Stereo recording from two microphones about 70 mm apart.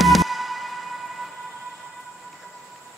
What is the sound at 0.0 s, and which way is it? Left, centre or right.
Music, centre.